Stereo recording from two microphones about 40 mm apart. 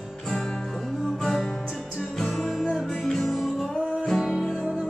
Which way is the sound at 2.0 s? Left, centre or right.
Centre.